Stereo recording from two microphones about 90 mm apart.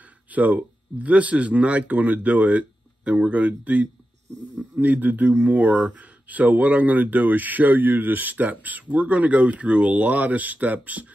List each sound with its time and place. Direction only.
0.3 s speech: 15° right (ahead or behind)